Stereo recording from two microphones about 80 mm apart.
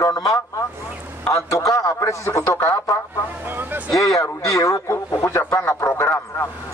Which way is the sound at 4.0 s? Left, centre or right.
Left.